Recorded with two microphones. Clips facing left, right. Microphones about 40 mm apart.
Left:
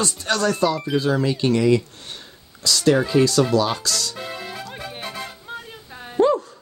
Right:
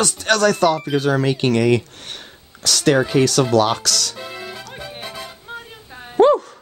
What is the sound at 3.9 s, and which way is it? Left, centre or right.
Speech, right.